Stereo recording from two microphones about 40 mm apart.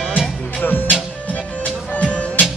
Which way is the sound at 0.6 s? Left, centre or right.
Left.